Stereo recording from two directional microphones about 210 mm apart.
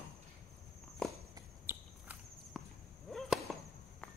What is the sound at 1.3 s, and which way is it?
Walk, 10° right (ahead or behind).